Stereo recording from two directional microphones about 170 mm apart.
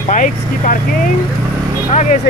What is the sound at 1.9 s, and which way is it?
Speech, 45° left (ahead or behind).